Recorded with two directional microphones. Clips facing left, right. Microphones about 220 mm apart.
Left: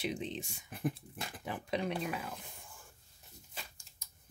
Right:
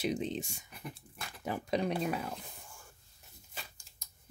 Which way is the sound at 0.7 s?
50° left (ahead or behind).